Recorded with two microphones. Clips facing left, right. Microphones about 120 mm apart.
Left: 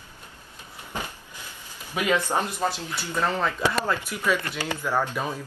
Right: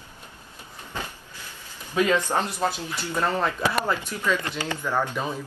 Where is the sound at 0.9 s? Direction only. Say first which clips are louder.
Left 1 dB; 15° left (ahead or behind).